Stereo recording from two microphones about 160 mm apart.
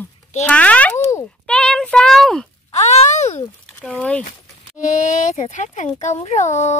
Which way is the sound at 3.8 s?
5° left (ahead or behind).